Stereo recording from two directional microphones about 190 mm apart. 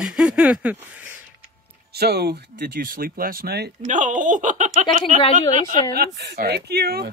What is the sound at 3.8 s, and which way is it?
Speech, 40° right (ahead or behind).